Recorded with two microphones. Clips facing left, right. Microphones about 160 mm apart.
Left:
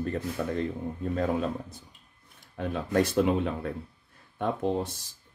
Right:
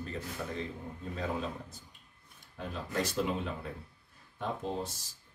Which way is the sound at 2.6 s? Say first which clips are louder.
Left 9 dB; 60° left (ahead or behind).